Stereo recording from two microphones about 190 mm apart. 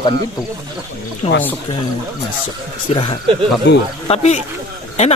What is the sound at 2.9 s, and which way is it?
Speech, 35° left (ahead or behind).